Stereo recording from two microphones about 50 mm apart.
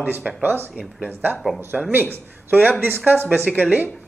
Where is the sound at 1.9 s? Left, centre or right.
Right.